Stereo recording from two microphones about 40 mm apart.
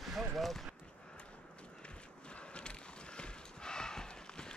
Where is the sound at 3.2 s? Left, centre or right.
Centre.